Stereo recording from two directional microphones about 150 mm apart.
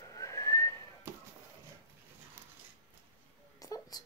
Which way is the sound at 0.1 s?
20° left (ahead or behind).